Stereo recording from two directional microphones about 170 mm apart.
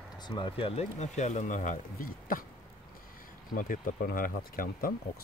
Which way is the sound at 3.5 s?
55° left (ahead or behind).